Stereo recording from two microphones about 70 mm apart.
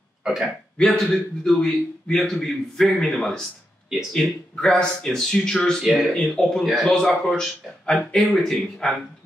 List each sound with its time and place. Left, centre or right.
0.2 s hiccup: centre
0.7 s a man's voice: centre